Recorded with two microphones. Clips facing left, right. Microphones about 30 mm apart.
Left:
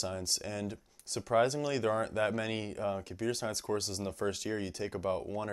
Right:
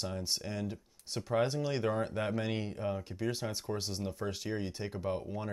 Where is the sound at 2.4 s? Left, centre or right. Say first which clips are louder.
Left 1 dB; centre.